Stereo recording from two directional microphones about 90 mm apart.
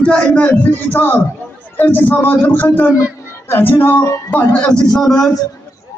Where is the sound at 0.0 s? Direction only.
10° left (ahead or behind).